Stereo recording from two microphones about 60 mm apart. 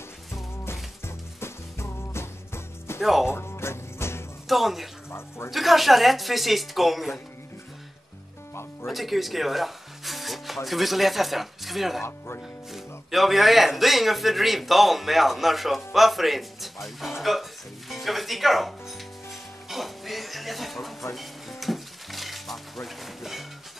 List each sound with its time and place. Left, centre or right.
1.0 s music: left
3.0 s speech: centre
3.3 s music: left
4.5 s speech: centre
8.8 s speech: centre
19.7 s music: centre
21.1 s stir: centre